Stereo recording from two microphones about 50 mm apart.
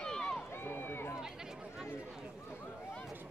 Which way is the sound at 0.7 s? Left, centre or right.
Left.